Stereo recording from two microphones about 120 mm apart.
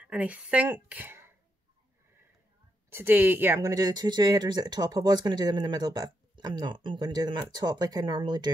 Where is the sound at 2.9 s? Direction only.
20° right (ahead or behind).